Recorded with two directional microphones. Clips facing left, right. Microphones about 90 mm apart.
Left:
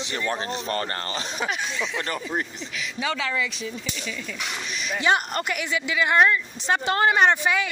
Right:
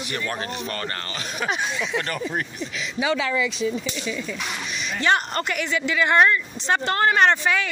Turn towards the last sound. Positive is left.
turn(degrees=10)  # may be behind; listen again after turning